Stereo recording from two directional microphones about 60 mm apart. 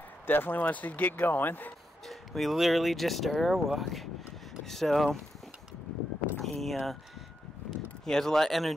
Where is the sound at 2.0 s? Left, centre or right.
Centre.